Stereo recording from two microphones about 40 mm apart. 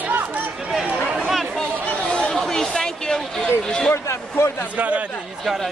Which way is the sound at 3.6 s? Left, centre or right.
Left.